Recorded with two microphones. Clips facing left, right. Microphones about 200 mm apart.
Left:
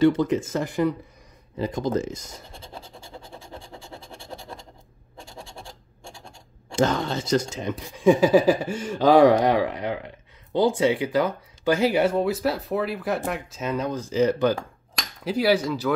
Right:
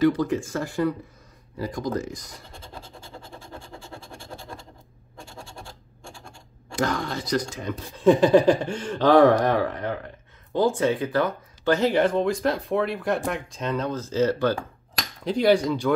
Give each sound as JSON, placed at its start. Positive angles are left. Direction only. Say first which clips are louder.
{"t": 0.0, "sound": "speech", "louder": "left 2 dB", "side_deg": 25}
{"t": 6.7, "sound": "speech", "louder": "left 3 dB", "side_deg": 25}
{"t": 7.8, "sound": "speech", "louder": "even", "side_deg": 10}